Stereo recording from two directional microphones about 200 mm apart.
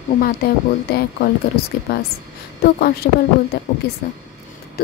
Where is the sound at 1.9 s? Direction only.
55° left (ahead or behind).